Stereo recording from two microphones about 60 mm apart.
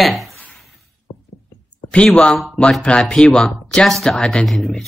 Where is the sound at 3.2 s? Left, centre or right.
Centre.